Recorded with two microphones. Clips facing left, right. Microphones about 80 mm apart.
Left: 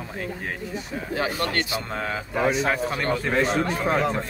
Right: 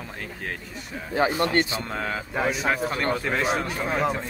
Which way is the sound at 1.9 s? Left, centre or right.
Centre.